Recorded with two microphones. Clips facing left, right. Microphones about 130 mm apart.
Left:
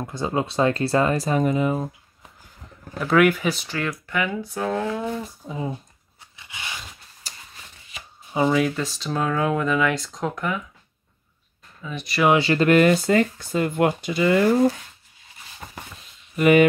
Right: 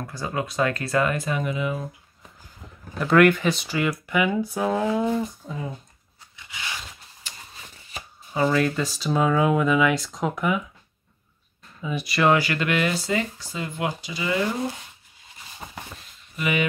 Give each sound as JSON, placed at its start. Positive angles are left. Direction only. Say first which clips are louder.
{"t": 0.0, "sound": "speech", "louder": "left 4 dB", "side_deg": 25}
{"t": 3.0, "sound": "speech", "louder": "right 1 dB", "side_deg": 5}
{"t": 3.6, "sound": "speech", "louder": "right 3 dB", "side_deg": -5}
{"t": 5.2, "sound": "speech", "louder": "right 3 dB", "side_deg": 10}
{"t": 7.2, "sound": "a sound", "louder": "even", "side_deg": 40}
{"t": 8.3, "sound": "speech", "louder": "left 1 dB", "side_deg": 10}
{"t": 11.8, "sound": "speech", "louder": "right 4 dB", "side_deg": -5}
{"t": 12.4, "sound": "speech", "louder": "left 5 dB", "side_deg": 30}
{"t": 12.6, "sound": "speech", "louder": "left 8 dB", "side_deg": 45}
{"t": 16.3, "sound": "speech", "louder": "left 10 dB", "side_deg": 50}